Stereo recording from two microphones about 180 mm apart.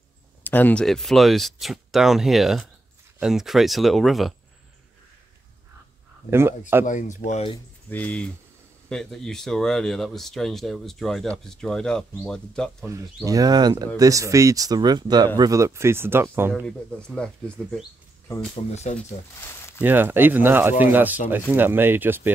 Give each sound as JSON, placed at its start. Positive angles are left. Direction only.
{"t": 0.4, "sound": "speech", "side_deg": 10}
{"t": 6.9, "sound": "speech", "side_deg": 45}
{"t": 7.9, "sound": "speech", "side_deg": 5}
{"t": 12.8, "sound": "speech", "side_deg": -20}
{"t": 16.6, "sound": "speech", "side_deg": 5}
{"t": 18.5, "sound": "speech", "side_deg": 40}
{"t": 19.4, "sound": "a sound", "side_deg": 15}
{"t": 19.8, "sound": "speech", "side_deg": -10}